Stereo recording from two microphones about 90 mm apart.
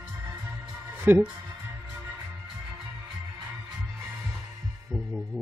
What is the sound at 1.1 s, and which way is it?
Speech, 20° right (ahead or behind).